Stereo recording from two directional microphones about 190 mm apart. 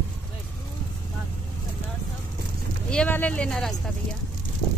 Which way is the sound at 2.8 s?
5° left (ahead or behind).